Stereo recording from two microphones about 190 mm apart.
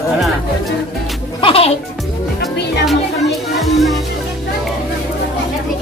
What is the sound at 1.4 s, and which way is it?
Music, 30° left (ahead or behind).